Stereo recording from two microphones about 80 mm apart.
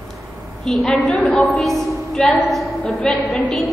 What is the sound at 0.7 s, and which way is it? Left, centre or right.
Speech, centre.